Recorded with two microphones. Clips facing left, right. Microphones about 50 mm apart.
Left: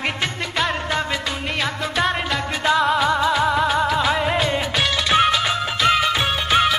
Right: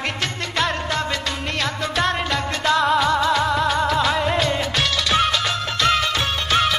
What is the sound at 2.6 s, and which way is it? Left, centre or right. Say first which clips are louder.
Music: even; centre.